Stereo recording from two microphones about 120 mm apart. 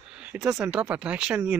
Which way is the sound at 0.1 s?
10° right (ahead or behind).